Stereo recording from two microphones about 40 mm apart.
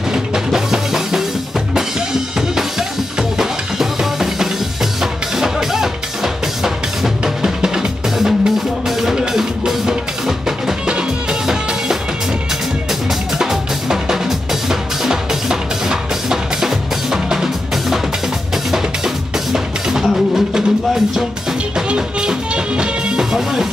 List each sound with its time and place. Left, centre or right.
0.1 s music: centre
3.2 s music: centre
10.9 s music: right
13.4 s drum: centre
14.7 s music: centre
21.7 s music: right